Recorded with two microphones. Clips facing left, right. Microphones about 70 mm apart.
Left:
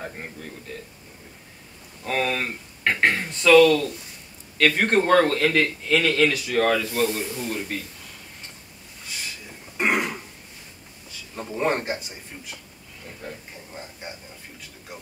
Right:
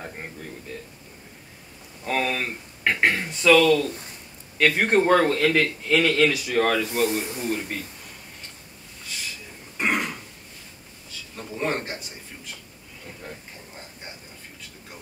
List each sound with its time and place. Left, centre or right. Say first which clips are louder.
2.0 s a man's voice: even; centre
6.8 s speech: right 1 dB; centre
7.5 s speech: even; centre
9.8 s throat clearing: left 2 dB; centre
11.3 s speech: left 3 dB; centre